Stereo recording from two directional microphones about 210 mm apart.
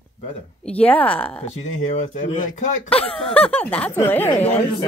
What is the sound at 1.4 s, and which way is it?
Speech, 35° left (ahead or behind).